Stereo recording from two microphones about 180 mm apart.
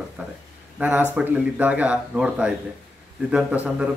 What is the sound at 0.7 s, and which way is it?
Speech, 10° right (ahead or behind).